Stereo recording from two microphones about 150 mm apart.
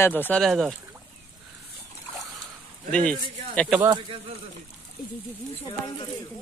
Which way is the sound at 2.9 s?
10° left (ahead or behind).